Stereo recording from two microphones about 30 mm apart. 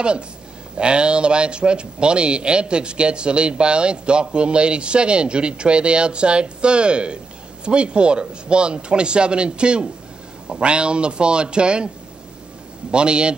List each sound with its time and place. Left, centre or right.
0.7 s speech: right
12.9 s speech: right